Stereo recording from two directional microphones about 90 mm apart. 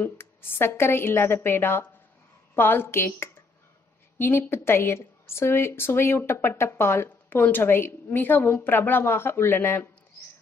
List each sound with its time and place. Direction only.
0.0 s speech: 25° left (ahead or behind)